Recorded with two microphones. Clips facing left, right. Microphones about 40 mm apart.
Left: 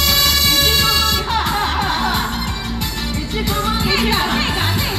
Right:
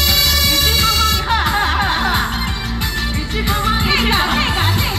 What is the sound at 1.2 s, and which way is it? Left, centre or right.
Music, right.